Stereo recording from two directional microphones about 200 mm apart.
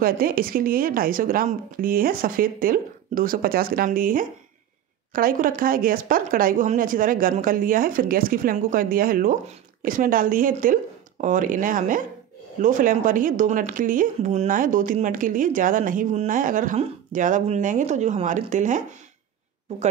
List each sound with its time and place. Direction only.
0.0 s speech: 45° right (ahead or behind)